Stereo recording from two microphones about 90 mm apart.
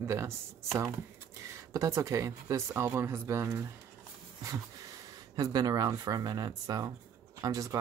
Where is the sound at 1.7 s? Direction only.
35° right (ahead or behind).